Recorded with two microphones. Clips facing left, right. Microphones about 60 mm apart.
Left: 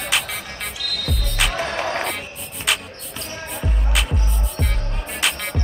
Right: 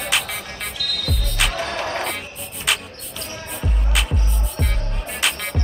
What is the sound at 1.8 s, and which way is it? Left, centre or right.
Music, centre.